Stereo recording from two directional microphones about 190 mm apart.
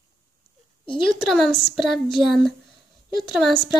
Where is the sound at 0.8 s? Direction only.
25° left (ahead or behind).